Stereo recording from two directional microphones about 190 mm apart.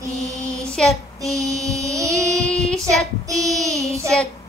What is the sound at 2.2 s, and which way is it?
Child singing, 15° right (ahead or behind).